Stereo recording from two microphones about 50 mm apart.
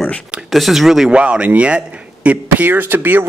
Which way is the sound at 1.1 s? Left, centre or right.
Right.